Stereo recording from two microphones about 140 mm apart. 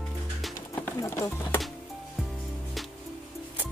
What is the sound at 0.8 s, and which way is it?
Horse, 20° left (ahead or behind).